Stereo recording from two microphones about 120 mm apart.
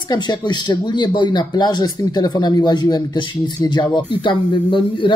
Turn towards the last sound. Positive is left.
turn(degrees=45)  # may be behind; listen again after turning